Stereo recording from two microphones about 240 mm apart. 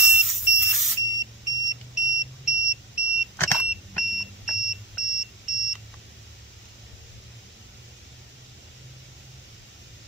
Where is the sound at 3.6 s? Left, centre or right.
Centre.